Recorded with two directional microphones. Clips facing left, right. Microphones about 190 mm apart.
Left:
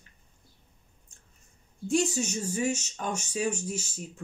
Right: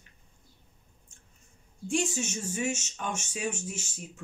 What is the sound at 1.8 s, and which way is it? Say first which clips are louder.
Speech: left 3 dB; 40° left (ahead or behind).